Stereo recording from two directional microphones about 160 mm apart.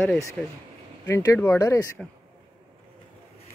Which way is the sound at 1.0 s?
20° left (ahead or behind).